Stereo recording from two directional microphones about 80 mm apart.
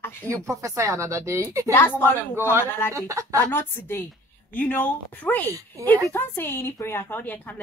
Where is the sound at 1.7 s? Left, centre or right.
Left.